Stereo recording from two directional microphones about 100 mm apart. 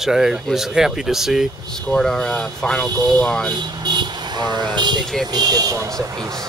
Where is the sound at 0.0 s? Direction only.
5° right (ahead or behind).